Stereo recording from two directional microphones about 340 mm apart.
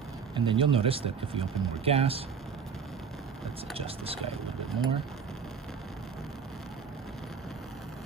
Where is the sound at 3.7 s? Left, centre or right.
Centre.